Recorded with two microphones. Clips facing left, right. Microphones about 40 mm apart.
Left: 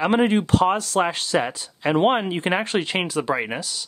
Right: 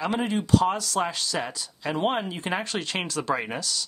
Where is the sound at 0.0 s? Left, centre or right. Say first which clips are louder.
Left 8 dB; left.